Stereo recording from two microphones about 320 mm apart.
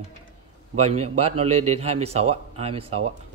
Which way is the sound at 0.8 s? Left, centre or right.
Centre.